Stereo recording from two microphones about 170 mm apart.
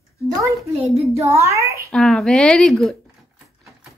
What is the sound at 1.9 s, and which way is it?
A woman's voice, centre (ahead or behind).